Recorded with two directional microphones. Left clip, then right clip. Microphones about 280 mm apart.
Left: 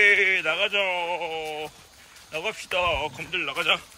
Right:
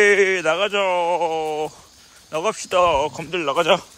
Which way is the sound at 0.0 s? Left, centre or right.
Centre.